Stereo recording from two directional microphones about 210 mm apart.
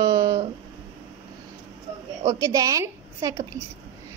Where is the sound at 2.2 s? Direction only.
15° right (ahead or behind).